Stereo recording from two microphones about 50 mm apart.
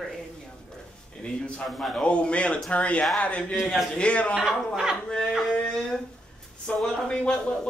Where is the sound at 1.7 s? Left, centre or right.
Centre.